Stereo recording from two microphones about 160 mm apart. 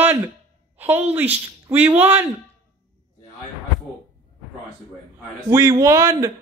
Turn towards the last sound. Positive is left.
turn(degrees=-20)  # may be behind; listen again after turning